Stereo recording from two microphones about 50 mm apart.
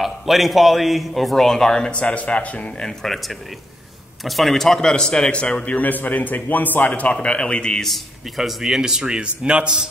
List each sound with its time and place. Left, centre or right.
0.0 s a man's voice: centre; by 2.7 s left
2.8 s a man's voice: centre
5.8 s a man's voice: left
7.0 s a man's voice: left
7.8 s a man's voice: centre; by 9.8 s right